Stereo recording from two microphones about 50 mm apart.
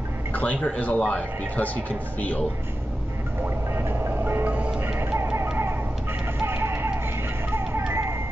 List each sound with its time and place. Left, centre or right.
0.3 s a man's voice: left
3.4 s music: right
4.5 s music: right
4.8 s music: right
6.4 s music: right